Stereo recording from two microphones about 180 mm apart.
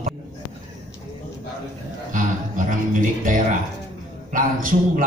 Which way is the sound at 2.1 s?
45° right (ahead or behind).